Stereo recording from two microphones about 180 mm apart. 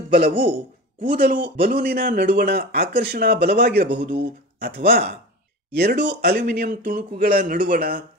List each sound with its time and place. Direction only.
0.1 s a man's voice: 60° right (ahead or behind)